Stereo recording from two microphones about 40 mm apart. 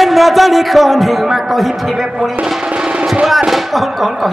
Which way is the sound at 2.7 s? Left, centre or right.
Right.